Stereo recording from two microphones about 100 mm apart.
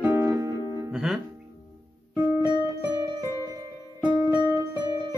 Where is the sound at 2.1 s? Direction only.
15° right (ahead or behind).